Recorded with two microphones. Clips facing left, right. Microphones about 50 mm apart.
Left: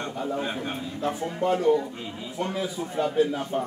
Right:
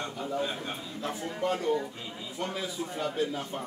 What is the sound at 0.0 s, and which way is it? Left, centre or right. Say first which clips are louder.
A man's voice: left 3 dB; left.